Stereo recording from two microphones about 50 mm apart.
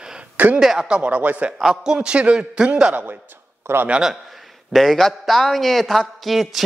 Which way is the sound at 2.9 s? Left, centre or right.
Right.